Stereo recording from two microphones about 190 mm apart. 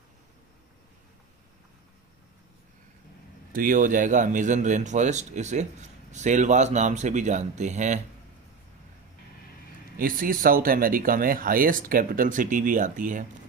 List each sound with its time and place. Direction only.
3.5 s speech: 45° right (ahead or behind)
9.9 s speech: 50° right (ahead or behind)